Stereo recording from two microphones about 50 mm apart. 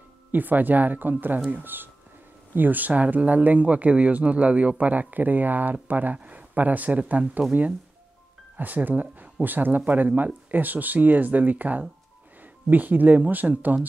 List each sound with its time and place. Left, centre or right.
0.3 s speech: right
8.5 s speech: right